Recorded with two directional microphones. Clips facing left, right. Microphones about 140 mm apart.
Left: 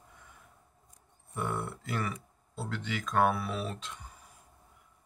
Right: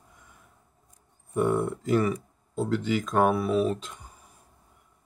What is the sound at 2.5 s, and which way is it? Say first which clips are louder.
Speech: right 11 dB; 40° right (ahead or behind).